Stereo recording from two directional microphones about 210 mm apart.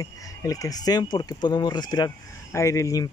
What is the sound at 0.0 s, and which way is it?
Speech, 15° left (ahead or behind).